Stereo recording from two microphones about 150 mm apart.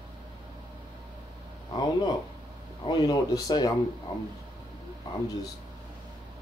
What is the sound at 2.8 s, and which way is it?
Speech, 25° left (ahead or behind).